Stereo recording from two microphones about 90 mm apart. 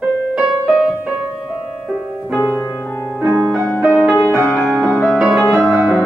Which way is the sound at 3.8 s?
5° right (ahead or behind).